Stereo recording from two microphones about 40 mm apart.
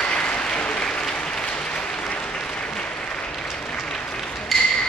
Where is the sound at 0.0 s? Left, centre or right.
Left.